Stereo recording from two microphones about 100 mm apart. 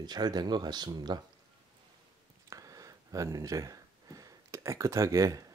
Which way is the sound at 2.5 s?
35° right (ahead or behind).